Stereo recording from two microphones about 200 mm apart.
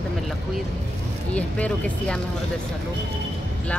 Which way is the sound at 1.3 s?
5° left (ahead or behind).